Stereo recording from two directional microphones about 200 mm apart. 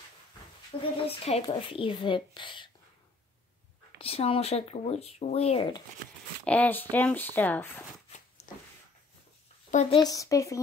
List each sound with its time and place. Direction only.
1.0 s speech: 30° left (ahead or behind)
4.0 s speech: 30° left (ahead or behind)
6.4 s speech: 5° left (ahead or behind)
8.4 s a sound: 35° left (ahead or behind)
9.7 s speech: 30° left (ahead or behind); by 10.6 s 15° left (ahead or behind)